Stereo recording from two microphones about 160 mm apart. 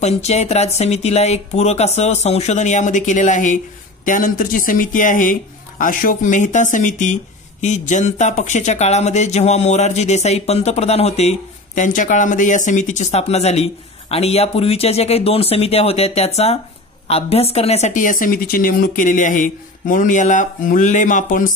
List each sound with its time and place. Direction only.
0.0 s speech: 45° left (ahead or behind)